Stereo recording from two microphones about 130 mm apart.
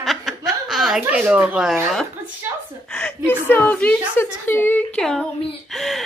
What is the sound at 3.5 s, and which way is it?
A woman's voice, 15° left (ahead or behind).